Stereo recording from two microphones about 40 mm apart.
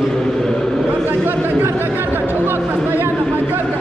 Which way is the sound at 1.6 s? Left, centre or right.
Right.